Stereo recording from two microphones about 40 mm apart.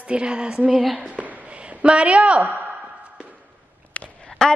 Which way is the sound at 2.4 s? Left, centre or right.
Right.